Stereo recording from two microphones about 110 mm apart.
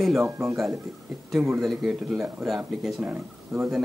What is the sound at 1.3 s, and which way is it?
Speech, 5° right (ahead or behind).